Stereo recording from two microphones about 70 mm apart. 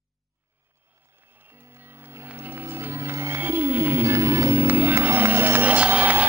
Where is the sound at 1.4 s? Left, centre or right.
Right.